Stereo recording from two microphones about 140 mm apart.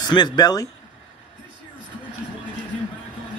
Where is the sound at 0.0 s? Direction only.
30° left (ahead or behind).